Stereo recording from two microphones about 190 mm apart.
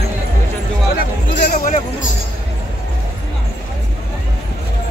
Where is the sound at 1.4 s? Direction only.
40° left (ahead or behind).